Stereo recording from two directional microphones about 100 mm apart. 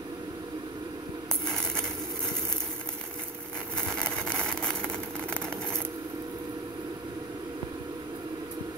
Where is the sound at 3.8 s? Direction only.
5° left (ahead or behind).